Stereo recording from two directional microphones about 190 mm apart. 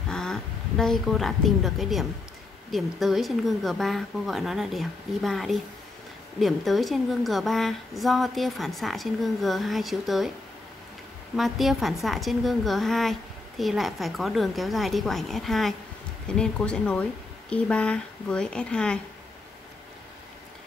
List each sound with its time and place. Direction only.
0.1 s a woman's voice: 5° left (ahead or behind)
11.3 s a woman's voice: centre (ahead or behind)